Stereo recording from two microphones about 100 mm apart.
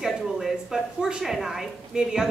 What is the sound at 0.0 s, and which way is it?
A woman's voice, 5° right (ahead or behind).